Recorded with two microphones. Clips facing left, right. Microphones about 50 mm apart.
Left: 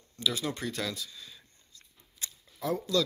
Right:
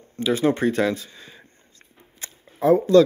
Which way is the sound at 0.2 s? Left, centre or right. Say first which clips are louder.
Right 12 dB; right.